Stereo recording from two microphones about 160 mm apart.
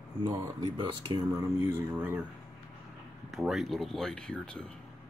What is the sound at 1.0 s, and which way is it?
Speech, 25° right (ahead or behind).